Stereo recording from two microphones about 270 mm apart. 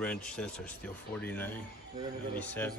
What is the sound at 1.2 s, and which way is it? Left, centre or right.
A man's voice, centre.